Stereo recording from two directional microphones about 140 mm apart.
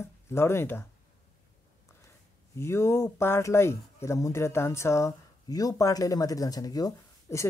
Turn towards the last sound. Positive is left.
turn(degrees=25)  # may be behind; listen again after turning